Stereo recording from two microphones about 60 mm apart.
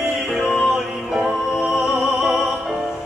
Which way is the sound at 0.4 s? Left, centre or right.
Left.